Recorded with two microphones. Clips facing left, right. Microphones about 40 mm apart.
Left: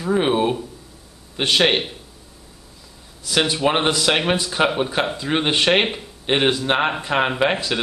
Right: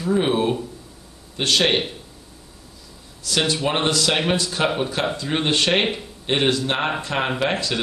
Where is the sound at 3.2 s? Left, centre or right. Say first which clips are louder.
Left 3 dB; centre.